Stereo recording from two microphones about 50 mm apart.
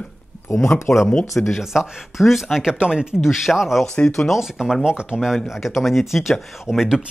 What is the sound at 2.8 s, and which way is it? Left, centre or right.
Speech, centre.